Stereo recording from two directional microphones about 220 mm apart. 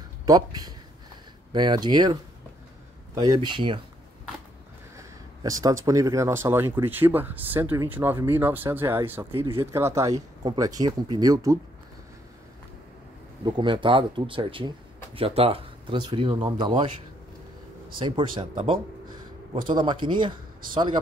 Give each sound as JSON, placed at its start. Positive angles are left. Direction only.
{"t": 0.2, "sound": "speech", "side_deg": -15}
{"t": 3.2, "sound": "speech", "side_deg": -20}
{"t": 4.9, "sound": "speech", "side_deg": -15}
{"t": 13.5, "sound": "speech", "side_deg": -20}
{"t": 17.9, "sound": "speech", "side_deg": -20}
{"t": 19.8, "sound": "speech", "side_deg": -20}